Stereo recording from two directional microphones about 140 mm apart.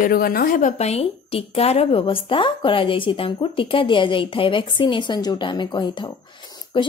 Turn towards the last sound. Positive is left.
turn(degrees=35)  # may be behind; listen again after turning